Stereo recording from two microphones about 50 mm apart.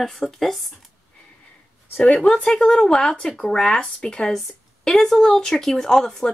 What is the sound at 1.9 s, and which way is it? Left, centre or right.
Speech, centre.